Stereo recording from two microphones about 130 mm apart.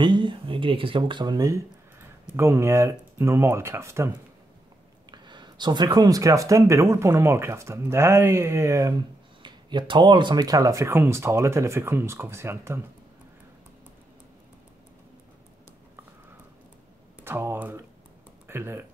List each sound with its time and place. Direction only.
0.0 s speech: 35° right (ahead or behind); by 4.1 s 20° right (ahead or behind)
5.1 s speech: 35° right (ahead or behind); by 12.8 s 20° right (ahead or behind)
17.2 s speech: 15° right (ahead or behind)